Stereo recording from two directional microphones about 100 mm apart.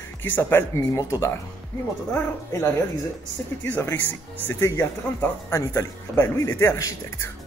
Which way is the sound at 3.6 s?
15° left (ahead or behind).